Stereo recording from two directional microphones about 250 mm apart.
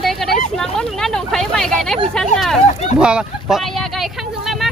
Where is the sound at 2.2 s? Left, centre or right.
Centre.